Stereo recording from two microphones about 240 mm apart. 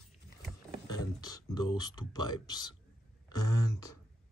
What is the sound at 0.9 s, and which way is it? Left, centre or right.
Speech, centre.